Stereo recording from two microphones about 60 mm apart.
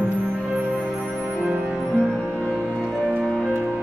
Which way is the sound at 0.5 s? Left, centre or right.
Right.